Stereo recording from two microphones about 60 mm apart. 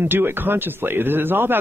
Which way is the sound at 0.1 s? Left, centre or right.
Right.